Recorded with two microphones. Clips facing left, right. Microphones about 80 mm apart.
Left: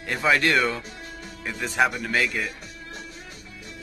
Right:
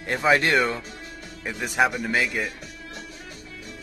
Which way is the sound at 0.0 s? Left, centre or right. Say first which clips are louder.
Right 1 dB; right.